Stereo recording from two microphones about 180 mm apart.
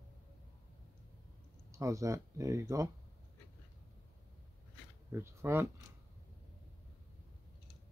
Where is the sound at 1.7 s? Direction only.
15° right (ahead or behind).